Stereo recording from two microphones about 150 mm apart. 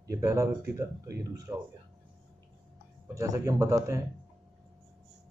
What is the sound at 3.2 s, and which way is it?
Speech, 20° right (ahead or behind).